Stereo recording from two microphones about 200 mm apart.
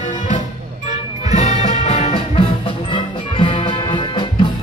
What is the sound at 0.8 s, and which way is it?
Music, 35° left (ahead or behind).